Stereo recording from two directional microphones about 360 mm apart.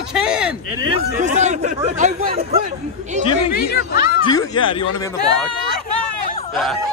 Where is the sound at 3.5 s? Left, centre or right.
Left.